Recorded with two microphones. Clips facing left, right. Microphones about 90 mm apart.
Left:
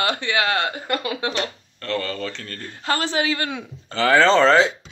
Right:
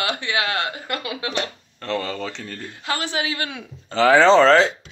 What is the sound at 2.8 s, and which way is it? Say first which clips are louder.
Speech: left 3 dB; 35° left (ahead or behind).